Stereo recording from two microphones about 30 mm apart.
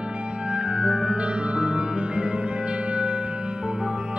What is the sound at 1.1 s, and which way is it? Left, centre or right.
Music, right.